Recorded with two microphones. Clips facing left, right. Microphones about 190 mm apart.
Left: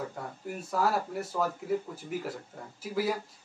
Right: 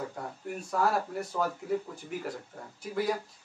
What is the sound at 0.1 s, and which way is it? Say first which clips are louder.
Speech: right 1 dB; 5° left (ahead or behind).